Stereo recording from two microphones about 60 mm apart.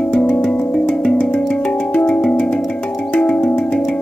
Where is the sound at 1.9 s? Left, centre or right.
Centre.